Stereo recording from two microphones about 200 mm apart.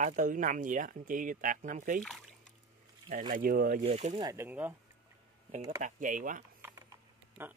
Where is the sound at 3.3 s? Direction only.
45° right (ahead or behind).